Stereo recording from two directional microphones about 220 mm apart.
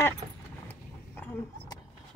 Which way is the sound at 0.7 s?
10° left (ahead or behind).